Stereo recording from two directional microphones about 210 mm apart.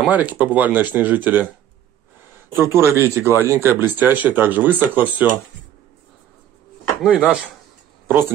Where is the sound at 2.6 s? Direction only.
10° right (ahead or behind).